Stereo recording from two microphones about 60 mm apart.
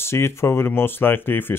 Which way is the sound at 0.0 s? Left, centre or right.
Left.